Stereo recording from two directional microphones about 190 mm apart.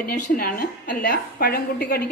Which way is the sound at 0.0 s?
50° left (ahead or behind).